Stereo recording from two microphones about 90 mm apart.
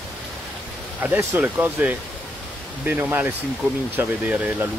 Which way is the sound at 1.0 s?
20° right (ahead or behind).